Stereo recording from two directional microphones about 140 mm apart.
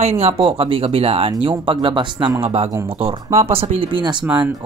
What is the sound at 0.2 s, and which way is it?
Speech, 40° right (ahead or behind).